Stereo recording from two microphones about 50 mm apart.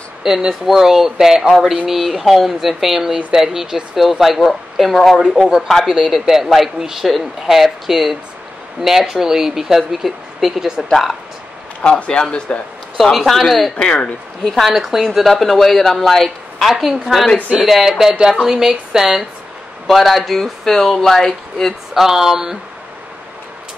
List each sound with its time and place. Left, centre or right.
0.2 s speech: centre
5.4 s speech: centre
5.9 s speech: centre
11.8 s a man's voice: centre
13.0 s speech: centre
13.7 s a man's voice: centre
14.5 s speech: centre
21.9 s speech: centre